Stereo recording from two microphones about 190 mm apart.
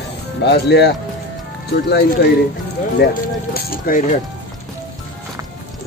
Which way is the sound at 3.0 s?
55° left (ahead or behind).